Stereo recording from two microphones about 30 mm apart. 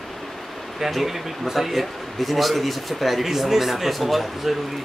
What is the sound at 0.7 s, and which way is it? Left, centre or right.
A man's voice, centre.